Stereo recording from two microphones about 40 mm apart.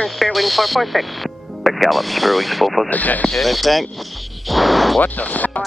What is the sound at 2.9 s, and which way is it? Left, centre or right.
Speech, left.